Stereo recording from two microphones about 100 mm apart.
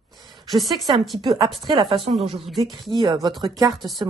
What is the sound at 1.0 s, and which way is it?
Speech, centre (ahead or behind).